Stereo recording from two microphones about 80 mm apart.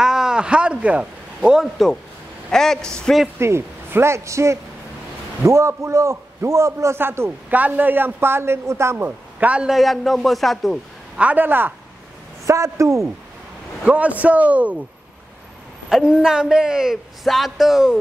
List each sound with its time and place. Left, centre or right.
0.0 s a sound: centre
2.5 s speech: centre
3.3 s a man's voice: right
7.0 s a man's voice: right
9.7 s speech: centre
11.1 s a man's voice: centre
12.4 s a man's voice: right
13.8 s a man's voice: centre
15.9 s a man's voice: centre